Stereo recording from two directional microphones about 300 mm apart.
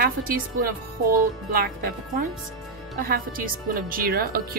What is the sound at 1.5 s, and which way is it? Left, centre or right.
Speech, right.